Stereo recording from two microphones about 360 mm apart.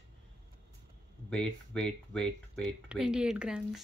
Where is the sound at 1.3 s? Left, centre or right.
Centre.